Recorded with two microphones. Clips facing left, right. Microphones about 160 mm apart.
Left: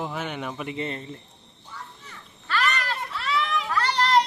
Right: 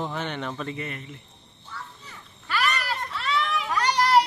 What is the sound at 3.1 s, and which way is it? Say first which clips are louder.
Children playing: left 1 dB; centre (ahead or behind).